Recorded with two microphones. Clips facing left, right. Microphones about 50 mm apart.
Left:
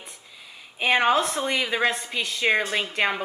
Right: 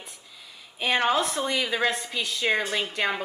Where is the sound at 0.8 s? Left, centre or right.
Centre.